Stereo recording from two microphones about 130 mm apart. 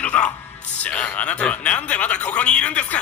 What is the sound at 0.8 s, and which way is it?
Speech, 10° left (ahead or behind).